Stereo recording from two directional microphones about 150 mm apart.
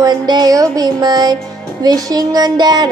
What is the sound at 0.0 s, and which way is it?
Music, 25° right (ahead or behind).